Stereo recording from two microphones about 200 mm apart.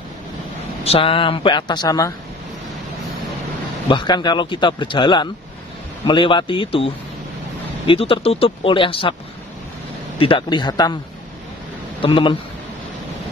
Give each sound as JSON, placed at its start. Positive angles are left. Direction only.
{"t": 0.8, "sound": "a man's voice", "side_deg": 30}
{"t": 3.9, "sound": "a man's voice", "side_deg": 20}
{"t": 10.1, "sound": "a man's voice", "side_deg": 25}
{"t": 12.0, "sound": "a man's voice", "side_deg": 25}